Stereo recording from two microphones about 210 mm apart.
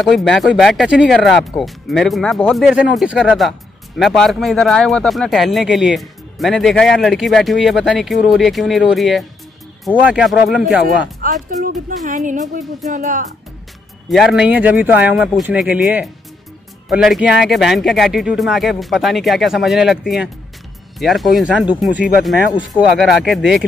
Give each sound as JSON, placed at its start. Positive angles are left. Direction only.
{"t": 0.0, "sound": "speech", "side_deg": 0}
{"t": 11.0, "sound": "music", "side_deg": -40}
{"t": 14.0, "sound": "speech", "side_deg": 0}